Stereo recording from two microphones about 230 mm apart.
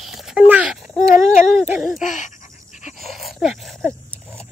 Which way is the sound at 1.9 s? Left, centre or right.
Left.